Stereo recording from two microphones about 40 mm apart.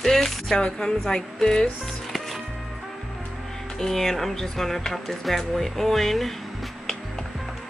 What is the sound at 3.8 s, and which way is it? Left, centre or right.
Speech, centre.